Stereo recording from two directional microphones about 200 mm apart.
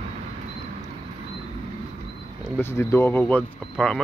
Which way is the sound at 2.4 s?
15° left (ahead or behind).